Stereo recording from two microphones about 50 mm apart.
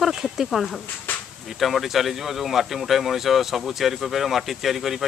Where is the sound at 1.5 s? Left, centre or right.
Centre.